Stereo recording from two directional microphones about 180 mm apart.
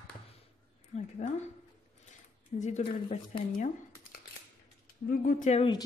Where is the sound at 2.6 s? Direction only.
40° left (ahead or behind).